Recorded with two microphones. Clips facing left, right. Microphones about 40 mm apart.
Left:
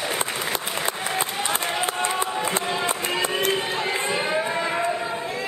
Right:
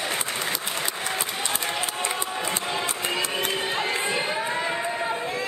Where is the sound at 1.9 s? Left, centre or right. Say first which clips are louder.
Left 4 dB; left.